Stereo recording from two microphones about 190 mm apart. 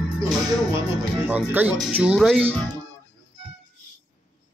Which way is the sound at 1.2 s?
10° right (ahead or behind).